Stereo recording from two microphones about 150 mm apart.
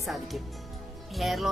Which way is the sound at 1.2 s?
Centre (ahead or behind).